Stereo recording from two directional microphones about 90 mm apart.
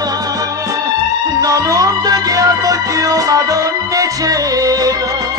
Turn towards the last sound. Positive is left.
turn(degrees=-40)  # may be behind; listen again after turning